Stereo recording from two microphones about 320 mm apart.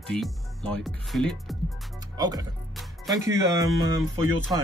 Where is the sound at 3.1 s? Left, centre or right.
Centre.